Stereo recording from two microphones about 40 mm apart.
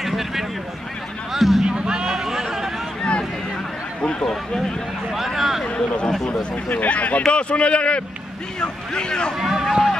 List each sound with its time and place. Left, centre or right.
0.0 s a sound: centre
1.3 s music: centre
1.7 s a sound: right
3.0 s a sound: left
4.0 s speech: centre
5.1 s speech: centre
5.8 s speech: left
6.5 s speech: left
9.4 s speech: centre